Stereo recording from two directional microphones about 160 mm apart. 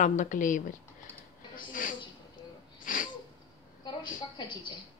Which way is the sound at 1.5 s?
60° left (ahead or behind).